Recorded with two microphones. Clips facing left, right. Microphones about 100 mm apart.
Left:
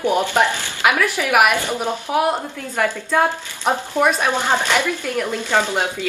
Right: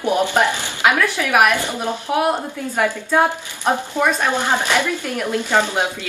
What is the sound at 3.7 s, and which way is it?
Speech, 15° left (ahead or behind).